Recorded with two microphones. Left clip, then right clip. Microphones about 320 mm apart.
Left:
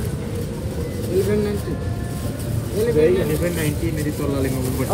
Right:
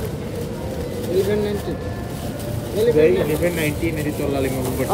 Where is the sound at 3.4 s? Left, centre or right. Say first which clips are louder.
Right 3 dB; centre.